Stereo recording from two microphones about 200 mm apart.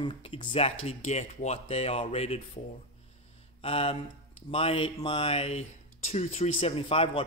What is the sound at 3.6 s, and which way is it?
Speech, 30° left (ahead or behind).